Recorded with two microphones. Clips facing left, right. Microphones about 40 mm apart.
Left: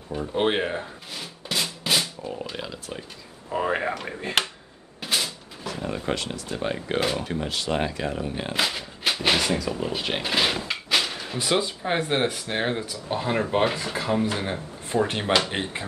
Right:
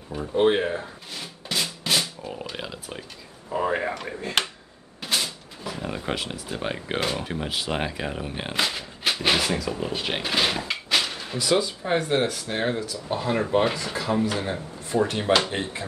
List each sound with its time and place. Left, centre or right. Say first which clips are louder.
0.3 s speech: right 3 dB; left
1.1 s drum: even; centre
2.5 s speech: left 1 dB; centre
3.5 s speech: even; centre
4.3 s speech: left 1 dB; left
5.0 s a sound: even; centre
5.7 s speech: left 1 dB; centre
8.5 s a sound: right 1 dB; centre
11.3 s speech: right 2 dB; left